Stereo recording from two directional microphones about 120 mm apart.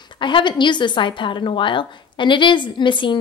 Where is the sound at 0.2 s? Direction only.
40° left (ahead or behind).